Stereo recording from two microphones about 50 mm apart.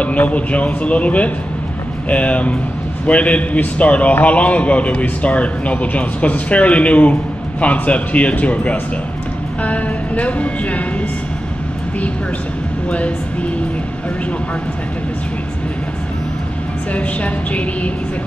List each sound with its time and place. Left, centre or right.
0.0 s a man's voice: left
12.9 s a man's voice: left
16.9 s a man's voice: left